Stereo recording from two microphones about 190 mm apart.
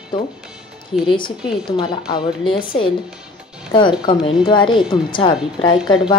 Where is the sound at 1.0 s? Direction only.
25° left (ahead or behind).